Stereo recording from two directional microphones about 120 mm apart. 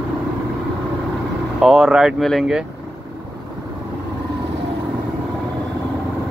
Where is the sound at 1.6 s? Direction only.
5° right (ahead or behind).